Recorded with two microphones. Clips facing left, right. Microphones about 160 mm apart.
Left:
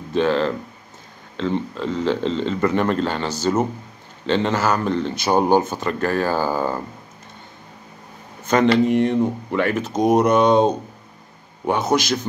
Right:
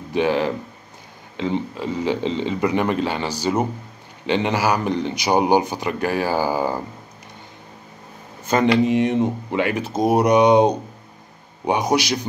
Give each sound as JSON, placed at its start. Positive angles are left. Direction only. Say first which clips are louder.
{"t": 0.1, "sound": "speech", "louder": "left 1 dB", "side_deg": -15}
{"t": 8.5, "sound": "speech", "louder": "left 1 dB", "side_deg": -15}